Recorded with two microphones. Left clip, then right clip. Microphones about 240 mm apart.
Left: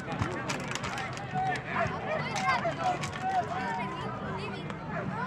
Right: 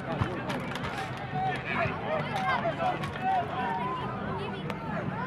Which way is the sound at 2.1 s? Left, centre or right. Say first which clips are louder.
Left 1 dB; left.